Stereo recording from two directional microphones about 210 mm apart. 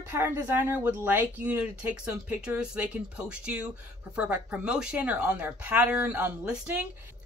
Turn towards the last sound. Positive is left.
turn(degrees=-5)  # may be behind; listen again after turning